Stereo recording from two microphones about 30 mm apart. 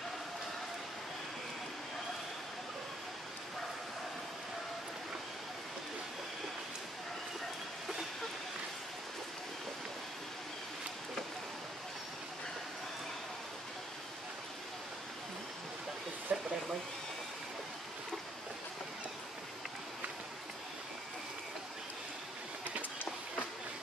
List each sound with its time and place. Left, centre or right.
16.3 s hair dryer: right